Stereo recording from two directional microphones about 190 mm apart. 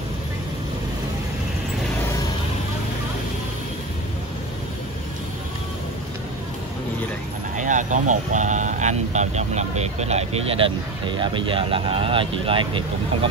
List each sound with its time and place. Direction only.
7.5 s speech: 40° right (ahead or behind)